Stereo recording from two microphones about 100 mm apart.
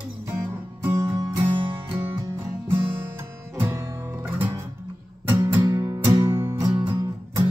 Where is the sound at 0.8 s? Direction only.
25° right (ahead or behind).